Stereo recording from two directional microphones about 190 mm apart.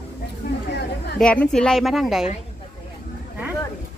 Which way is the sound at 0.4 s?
55° left (ahead or behind).